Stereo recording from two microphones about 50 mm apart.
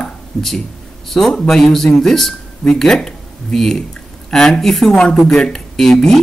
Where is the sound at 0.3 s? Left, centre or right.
Centre.